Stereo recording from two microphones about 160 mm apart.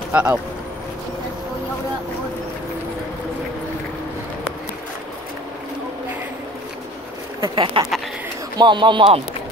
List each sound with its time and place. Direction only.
0.1 s speech: 10° right (ahead or behind)
7.3 s speech: 25° right (ahead or behind)